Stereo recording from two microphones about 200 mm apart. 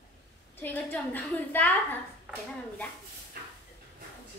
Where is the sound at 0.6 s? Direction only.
10° left (ahead or behind).